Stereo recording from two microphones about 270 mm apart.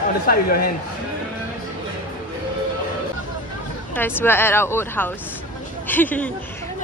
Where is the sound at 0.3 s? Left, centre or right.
Left.